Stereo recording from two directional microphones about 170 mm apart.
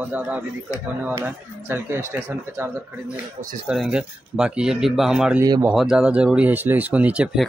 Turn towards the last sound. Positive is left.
turn(degrees=-5)  # may be behind; listen again after turning